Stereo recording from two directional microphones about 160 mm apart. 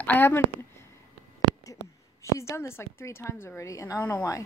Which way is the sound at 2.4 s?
15° left (ahead or behind).